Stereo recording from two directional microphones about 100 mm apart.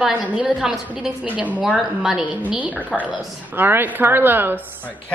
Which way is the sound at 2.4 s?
15° right (ahead or behind).